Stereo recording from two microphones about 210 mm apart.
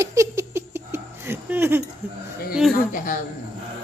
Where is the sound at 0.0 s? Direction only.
15° right (ahead or behind).